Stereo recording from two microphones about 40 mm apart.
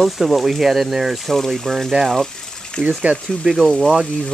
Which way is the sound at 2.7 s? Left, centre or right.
Centre.